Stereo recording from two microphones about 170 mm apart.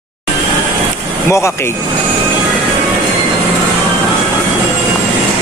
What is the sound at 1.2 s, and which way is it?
Speech, 15° left (ahead or behind).